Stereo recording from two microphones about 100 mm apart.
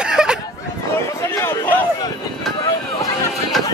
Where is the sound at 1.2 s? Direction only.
25° left (ahead or behind).